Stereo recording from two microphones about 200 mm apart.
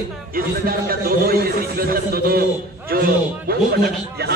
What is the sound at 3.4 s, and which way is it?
Speech, 55° right (ahead or behind).